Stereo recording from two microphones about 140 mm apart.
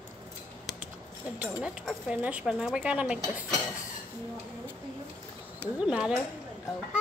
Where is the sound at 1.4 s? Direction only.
10° right (ahead or behind).